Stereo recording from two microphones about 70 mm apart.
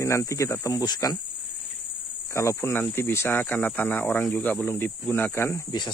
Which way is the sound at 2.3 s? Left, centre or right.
Left.